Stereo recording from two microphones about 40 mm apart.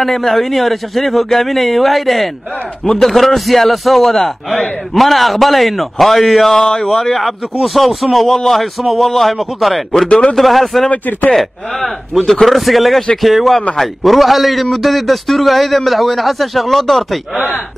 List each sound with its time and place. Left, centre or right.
0.0 s a man's voice: centre
10.0 s a man's voice: left
10.3 s a man's voice: centre
10.9 s speech: left
11.2 s a man's voice: centre